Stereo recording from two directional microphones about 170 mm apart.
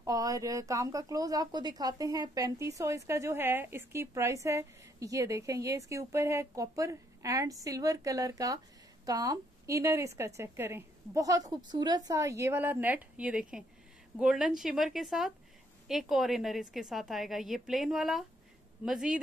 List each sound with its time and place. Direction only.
0.0 s a woman's voice: 20° right (ahead or behind); by 19.2 s 5° right (ahead or behind)